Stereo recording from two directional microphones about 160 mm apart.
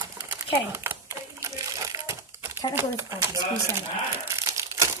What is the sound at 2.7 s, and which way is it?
Speech, 15° right (ahead or behind).